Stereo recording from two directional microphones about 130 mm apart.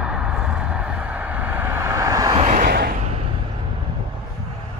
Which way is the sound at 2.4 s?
65° right (ahead or behind).